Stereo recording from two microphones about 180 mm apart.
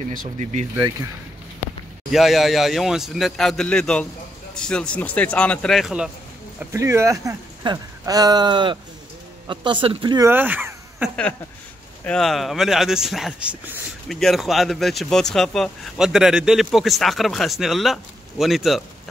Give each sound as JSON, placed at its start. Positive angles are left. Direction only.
{"t": 0.1, "sound": "speech", "side_deg": -45}
{"t": 2.0, "sound": "speech", "side_deg": 0}
{"t": 6.6, "sound": "speech", "side_deg": -15}
{"t": 12.0, "sound": "speech", "side_deg": 5}